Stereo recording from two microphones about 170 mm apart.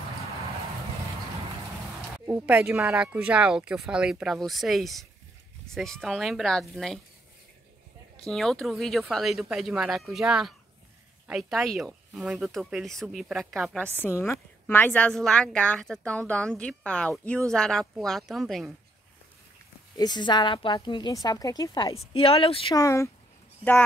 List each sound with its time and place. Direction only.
2.2 s speech: 10° right (ahead or behind)
8.2 s speech: 5° left (ahead or behind)
14.0 s a woman's voice: 15° left (ahead or behind)
20.0 s a woman's voice: 25° left (ahead or behind)
21.9 s speech: 35° left (ahead or behind)
22.8 s a woman's voice: 20° left (ahead or behind)